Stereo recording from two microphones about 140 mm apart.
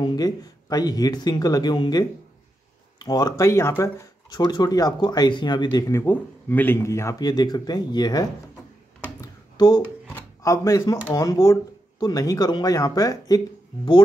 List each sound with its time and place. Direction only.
0.0 s speech: 30° left (ahead or behind)
10.0 s speech: 20° left (ahead or behind)